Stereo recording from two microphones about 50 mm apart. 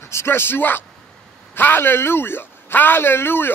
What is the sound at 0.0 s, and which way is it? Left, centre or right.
A man's voice, left.